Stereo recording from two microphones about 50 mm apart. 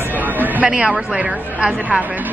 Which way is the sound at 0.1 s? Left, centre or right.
Right.